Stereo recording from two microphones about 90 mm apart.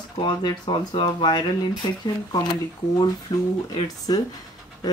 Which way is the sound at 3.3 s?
55° left (ahead or behind).